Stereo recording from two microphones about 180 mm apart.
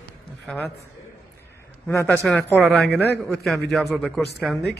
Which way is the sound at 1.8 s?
15° left (ahead or behind).